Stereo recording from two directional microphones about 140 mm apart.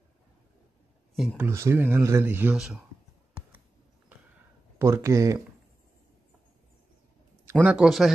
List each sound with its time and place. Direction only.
1.1 s speech: 5° right (ahead or behind)
1.5 s speech: 20° right (ahead or behind)
2.5 s speech: 5° right (ahead or behind)
4.7 s speech: 20° right (ahead or behind)
7.6 s speech: 5° right (ahead or behind)